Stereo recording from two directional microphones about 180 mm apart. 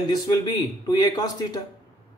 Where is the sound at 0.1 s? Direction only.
20° left (ahead or behind).